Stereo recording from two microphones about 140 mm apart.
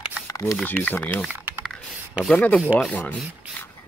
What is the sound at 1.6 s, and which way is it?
Computer keyboard, 5° right (ahead or behind).